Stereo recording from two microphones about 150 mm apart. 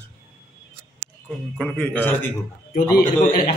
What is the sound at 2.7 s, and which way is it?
Speech, 90° left.